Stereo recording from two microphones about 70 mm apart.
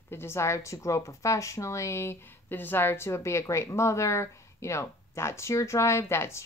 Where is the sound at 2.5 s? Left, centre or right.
Left.